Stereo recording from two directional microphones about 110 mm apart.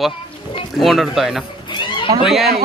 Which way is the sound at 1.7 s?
45° left (ahead or behind).